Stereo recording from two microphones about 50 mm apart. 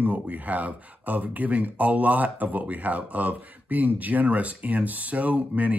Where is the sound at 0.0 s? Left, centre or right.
Right.